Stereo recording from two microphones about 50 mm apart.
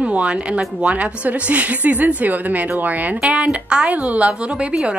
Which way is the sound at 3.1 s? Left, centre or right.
Right.